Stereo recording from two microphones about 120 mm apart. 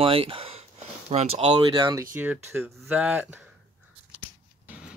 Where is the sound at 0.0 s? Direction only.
50° right (ahead or behind).